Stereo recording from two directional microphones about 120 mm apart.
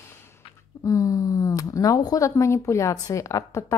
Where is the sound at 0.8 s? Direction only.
25° left (ahead or behind).